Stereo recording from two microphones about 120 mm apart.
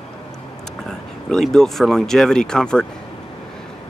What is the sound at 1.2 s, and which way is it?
Speech, 5° left (ahead or behind).